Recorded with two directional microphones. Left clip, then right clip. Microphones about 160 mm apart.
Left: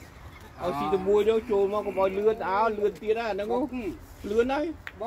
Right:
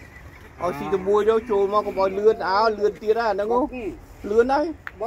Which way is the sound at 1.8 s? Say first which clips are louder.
Right 5 dB; 60° right (ahead or behind).